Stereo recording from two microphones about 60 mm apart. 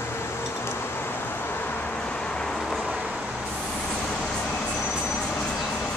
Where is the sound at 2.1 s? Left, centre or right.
Centre.